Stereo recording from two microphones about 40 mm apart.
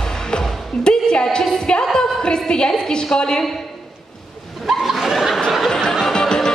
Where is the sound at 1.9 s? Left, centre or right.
Centre.